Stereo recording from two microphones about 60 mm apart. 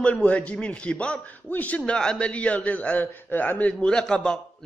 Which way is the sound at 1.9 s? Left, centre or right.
Centre.